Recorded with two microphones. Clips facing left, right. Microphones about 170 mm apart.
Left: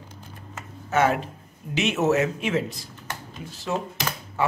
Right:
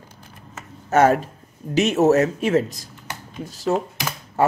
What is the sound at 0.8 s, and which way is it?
Speech, 45° right (ahead or behind).